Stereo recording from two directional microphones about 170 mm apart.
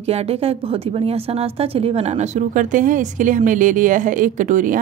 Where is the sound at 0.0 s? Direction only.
35° right (ahead or behind).